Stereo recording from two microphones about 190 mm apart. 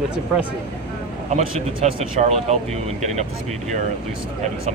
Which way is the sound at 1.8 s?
35° right (ahead or behind).